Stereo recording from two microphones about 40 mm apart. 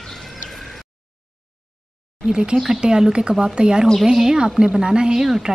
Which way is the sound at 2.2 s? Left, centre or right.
Right.